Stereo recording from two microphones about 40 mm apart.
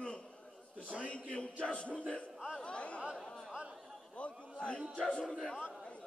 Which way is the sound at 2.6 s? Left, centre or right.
Left.